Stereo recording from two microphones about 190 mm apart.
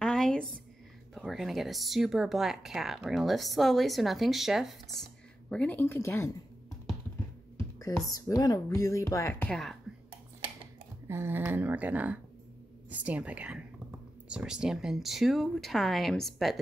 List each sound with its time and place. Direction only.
0.0 s a sound: 5° left (ahead or behind)
1.1 s speech: centre (ahead or behind)
7.5 s speech: 15° left (ahead or behind)
11.1 s speech: 10° right (ahead or behind)